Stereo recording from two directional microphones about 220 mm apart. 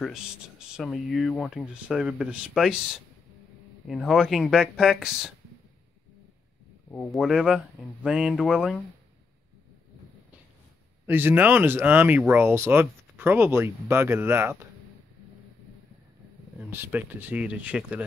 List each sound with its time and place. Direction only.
0.0 s speech: 5° right (ahead or behind)
6.9 s speech: centre (ahead or behind)
11.1 s speech: 10° right (ahead or behind)
16.5 s speech: 10° right (ahead or behind)